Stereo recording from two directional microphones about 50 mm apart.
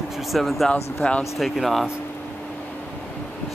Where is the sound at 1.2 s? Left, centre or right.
Centre.